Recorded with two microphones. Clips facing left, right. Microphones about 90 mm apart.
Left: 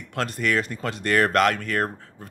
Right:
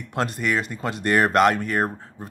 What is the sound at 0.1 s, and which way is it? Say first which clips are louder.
Speech: even; 15° right (ahead or behind).